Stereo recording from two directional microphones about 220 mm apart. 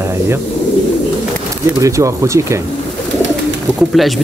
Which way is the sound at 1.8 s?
15° right (ahead or behind).